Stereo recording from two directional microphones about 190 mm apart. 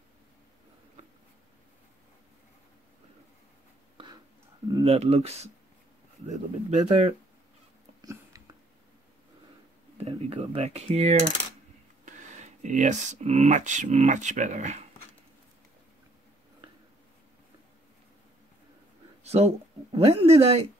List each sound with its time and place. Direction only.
4.8 s mechanisms: 35° right (ahead or behind)
8.0 s a sound: 20° right (ahead or behind)
10.0 s mechanisms: 30° right (ahead or behind)
12.0 s speech: 40° right (ahead or behind)
19.2 s speech: 35° right (ahead or behind)